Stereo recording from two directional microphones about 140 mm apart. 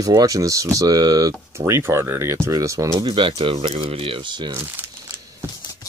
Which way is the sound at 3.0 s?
35° right (ahead or behind).